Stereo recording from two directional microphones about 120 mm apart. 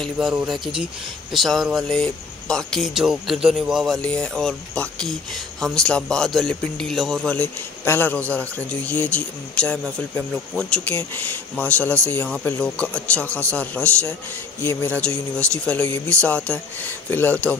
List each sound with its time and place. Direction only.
0.0 s speech: centre (ahead or behind)
7.8 s speech: 20° left (ahead or behind)
14.6 s speech: 20° left (ahead or behind)
15.0 s speech: 10° left (ahead or behind)